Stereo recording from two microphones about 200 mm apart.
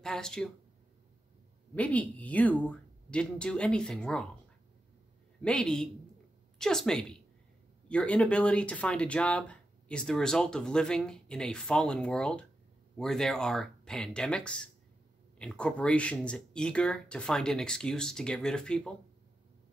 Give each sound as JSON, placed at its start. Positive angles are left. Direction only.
{"t": 0.0, "sound": "speech", "side_deg": 5}
{"t": 1.8, "sound": "speech", "side_deg": 5}
{"t": 5.4, "sound": "speech", "side_deg": 5}